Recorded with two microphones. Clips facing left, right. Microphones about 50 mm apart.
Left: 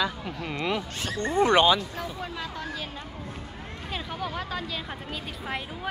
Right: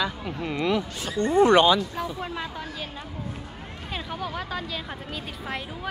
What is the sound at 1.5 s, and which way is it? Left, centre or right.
Speech, left.